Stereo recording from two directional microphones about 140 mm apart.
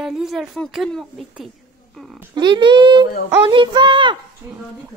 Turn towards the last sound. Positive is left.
turn(degrees=-20)  # may be behind; listen again after turning